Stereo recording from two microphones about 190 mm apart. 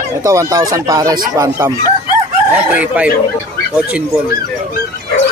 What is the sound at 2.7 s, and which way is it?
Speech, 5° right (ahead or behind).